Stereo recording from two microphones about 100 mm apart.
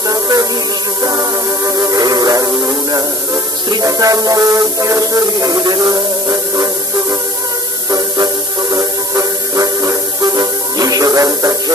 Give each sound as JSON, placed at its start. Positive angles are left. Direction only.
{"t": 0.1, "sound": "music", "side_deg": -35}
{"t": 1.8, "sound": "music", "side_deg": -40}
{"t": 8.7, "sound": "music", "side_deg": -35}